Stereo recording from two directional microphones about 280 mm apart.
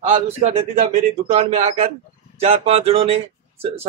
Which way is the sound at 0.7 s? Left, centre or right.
Right.